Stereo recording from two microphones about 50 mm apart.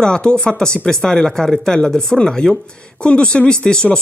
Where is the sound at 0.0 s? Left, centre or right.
Centre.